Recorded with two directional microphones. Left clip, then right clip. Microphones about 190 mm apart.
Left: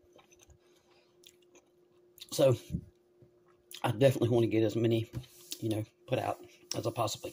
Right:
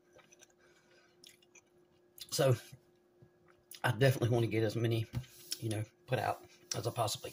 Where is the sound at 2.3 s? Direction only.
45° left (ahead or behind).